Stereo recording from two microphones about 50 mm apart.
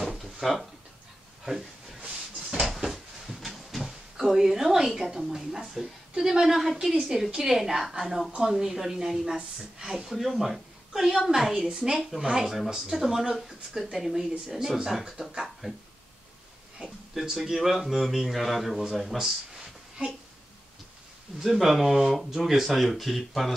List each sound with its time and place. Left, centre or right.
0.0 s drawer open or close: centre
1.4 s a sound: centre
5.2 s a woman's voice: centre
11.5 s a woman's voice: centre
21.4 s speech: centre